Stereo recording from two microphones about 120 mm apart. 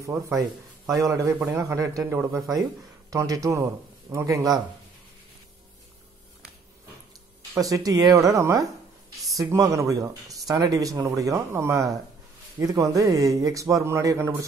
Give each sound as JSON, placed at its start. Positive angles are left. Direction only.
{"t": 0.3, "sound": "a man's voice", "side_deg": -25}
{"t": 7.5, "sound": "speech", "side_deg": -30}